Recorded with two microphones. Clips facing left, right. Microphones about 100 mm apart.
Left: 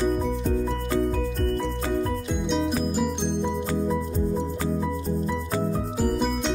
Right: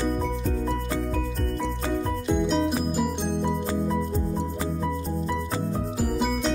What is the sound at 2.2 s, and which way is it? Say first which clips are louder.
Music: right 2 dB; centre (ahead or behind).